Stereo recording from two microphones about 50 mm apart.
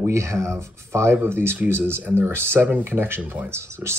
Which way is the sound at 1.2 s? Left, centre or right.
Right.